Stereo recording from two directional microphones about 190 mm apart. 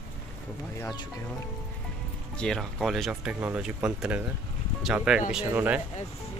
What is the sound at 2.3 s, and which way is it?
Speech, 5° left (ahead or behind).